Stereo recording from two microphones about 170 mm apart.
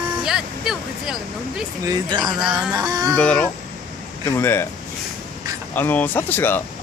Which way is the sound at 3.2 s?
5° left (ahead or behind).